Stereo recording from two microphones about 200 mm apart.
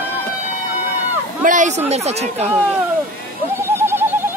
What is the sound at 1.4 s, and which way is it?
Speech, 40° right (ahead or behind).